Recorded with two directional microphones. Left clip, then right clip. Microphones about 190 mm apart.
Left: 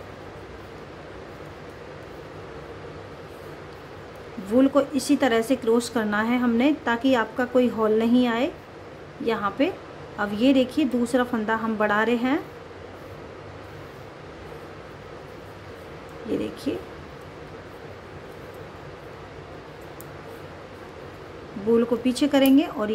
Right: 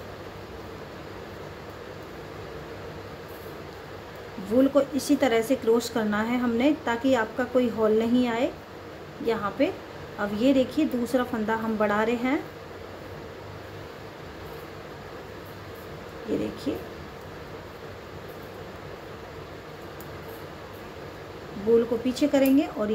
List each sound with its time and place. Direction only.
4.6 s a woman's voice: 15° left (ahead or behind)
16.7 s a sound: 15° left (ahead or behind)
22.0 s a woman's voice: 20° left (ahead or behind)